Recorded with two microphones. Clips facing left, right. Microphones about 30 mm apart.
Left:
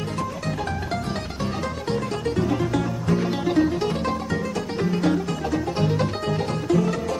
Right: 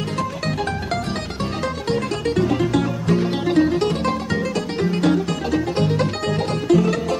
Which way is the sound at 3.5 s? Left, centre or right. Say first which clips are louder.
Right 5 dB; right.